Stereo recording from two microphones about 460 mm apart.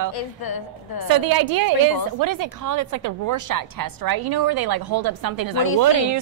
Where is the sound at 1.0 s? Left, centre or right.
Right.